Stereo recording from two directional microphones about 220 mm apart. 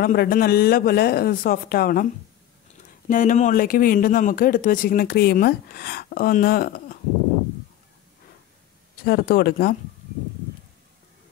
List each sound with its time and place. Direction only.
0.0 s speech: 40° left (ahead or behind)
3.1 s speech: 35° left (ahead or behind)
9.0 s speech: 45° left (ahead or behind)